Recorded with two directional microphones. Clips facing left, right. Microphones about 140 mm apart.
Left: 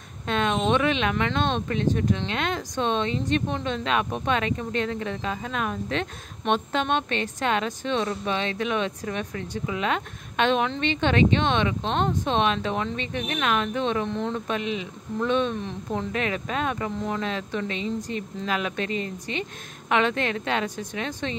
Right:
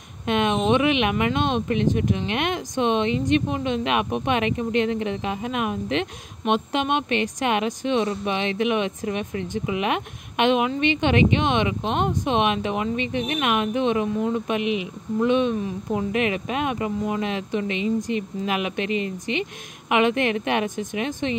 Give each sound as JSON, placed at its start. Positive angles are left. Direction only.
{"t": 0.3, "sound": "speech", "side_deg": -15}